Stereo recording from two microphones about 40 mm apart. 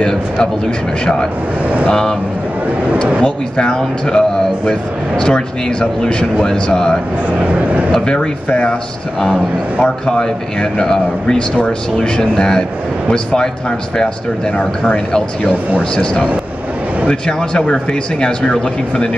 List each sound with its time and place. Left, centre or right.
1.9 s a man's voice: centre
3.3 s a man's voice: left
7.3 s speech: right
7.9 s a man's voice: left
10.0 s a man's voice: centre
17.1 s a man's voice: left